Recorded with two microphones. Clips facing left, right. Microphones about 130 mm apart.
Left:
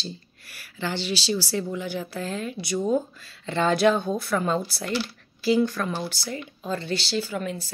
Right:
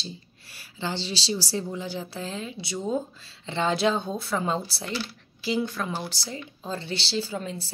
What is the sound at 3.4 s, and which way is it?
Speech, 20° right (ahead or behind).